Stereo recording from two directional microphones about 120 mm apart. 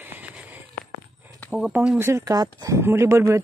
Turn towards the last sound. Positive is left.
turn(degrees=-25)  # may be behind; listen again after turning